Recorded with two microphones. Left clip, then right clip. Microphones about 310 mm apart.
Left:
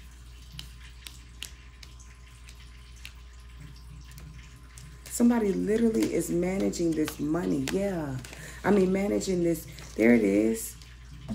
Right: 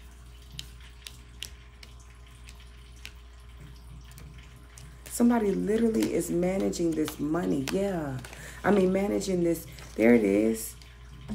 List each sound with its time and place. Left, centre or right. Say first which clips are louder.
0.6 s scissors: right 2 dB; centre
5.1 s speech: even; centre